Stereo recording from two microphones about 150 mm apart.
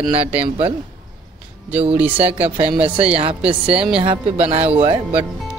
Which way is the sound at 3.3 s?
5° right (ahead or behind).